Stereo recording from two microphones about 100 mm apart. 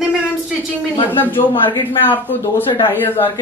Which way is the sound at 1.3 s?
60° left (ahead or behind).